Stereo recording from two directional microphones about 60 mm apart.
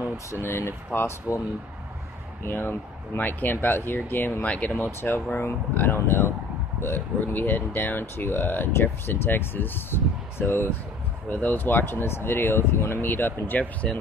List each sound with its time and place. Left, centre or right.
0.4 s speech: left
2.4 s speech: left
4.5 s speech: left
5.0 s speech: left
11.2 s speech: left
13.1 s speech: left